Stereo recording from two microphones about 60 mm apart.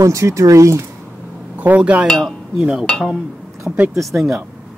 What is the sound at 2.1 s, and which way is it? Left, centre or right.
Speech, centre.